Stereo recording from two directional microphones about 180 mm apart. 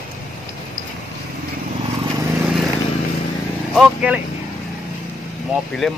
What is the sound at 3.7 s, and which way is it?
Speech, 5° right (ahead or behind).